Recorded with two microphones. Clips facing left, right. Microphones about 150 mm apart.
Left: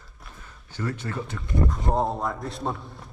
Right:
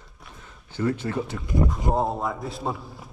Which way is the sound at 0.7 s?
20° right (ahead or behind).